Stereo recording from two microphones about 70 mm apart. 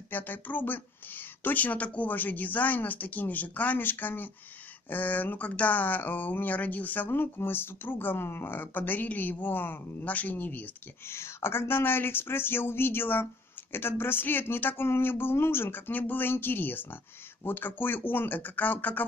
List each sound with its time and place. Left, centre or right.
0.1 s speech: left
11.1 s speech: left